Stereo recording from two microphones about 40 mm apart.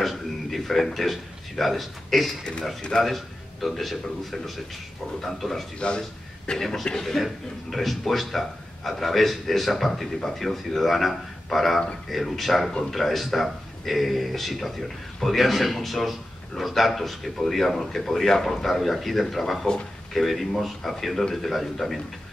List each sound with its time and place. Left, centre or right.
0.0 s a man's voice: centre
5.8 s a man's voice: left; by 22.0 s centre